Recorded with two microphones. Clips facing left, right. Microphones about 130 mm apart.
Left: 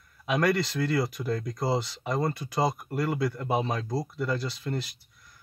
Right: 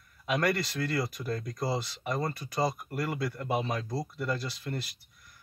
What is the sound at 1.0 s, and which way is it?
Speech, 20° left (ahead or behind).